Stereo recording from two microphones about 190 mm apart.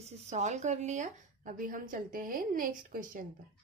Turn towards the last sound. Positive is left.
turn(degrees=-45)  # may be behind; listen again after turning